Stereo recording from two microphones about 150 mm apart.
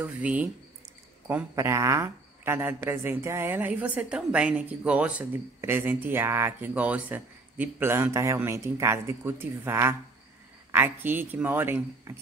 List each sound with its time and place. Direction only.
0.0 s speech: 10° right (ahead or behind)